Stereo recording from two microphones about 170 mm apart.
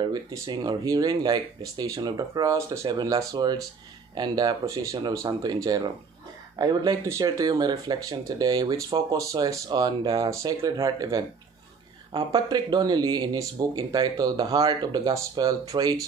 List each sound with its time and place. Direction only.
0.0 s speech: 25° right (ahead or behind)